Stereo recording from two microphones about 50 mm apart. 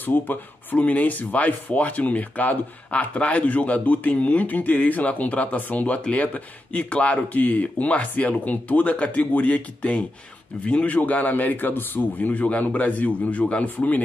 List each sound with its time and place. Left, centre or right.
0.0 s a man's voice: left